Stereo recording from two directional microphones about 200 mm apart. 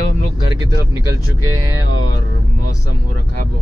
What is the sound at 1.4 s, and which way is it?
Music, 90° right.